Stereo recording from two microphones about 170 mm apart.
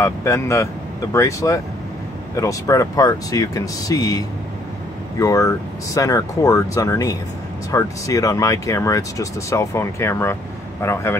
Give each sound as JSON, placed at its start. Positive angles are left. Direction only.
{"t": 0.0, "sound": "speech", "side_deg": 15}